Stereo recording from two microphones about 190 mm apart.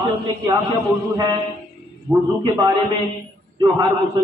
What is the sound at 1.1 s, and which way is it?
Speech, 20° right (ahead or behind).